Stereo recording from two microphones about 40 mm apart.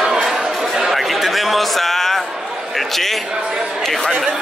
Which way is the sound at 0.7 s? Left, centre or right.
Centre.